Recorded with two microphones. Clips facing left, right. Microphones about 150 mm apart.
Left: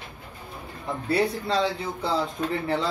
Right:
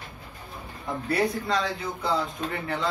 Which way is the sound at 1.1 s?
30° left (ahead or behind).